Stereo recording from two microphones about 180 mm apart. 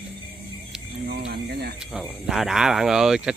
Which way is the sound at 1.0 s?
65° right (ahead or behind).